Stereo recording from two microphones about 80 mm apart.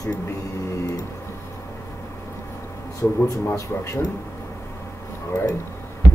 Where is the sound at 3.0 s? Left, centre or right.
Left.